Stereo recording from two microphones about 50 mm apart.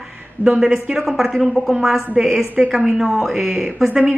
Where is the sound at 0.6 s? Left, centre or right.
Centre.